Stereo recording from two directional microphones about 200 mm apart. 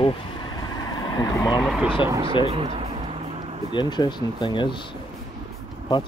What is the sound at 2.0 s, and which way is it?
Speech, 15° right (ahead or behind).